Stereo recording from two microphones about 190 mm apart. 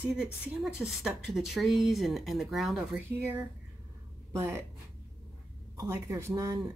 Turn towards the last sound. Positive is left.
turn(degrees=-15)  # may be behind; listen again after turning